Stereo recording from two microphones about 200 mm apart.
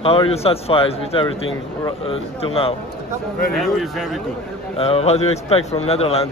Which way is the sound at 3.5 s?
Centre (ahead or behind).